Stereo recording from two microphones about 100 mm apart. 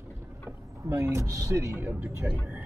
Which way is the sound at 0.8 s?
30° right (ahead or behind).